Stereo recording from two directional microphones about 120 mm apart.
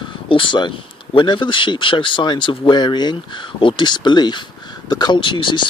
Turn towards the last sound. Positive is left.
turn(degrees=40)  # may be behind; listen again after turning